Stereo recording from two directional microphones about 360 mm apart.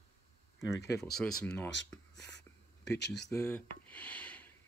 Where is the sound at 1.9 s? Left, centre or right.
Centre.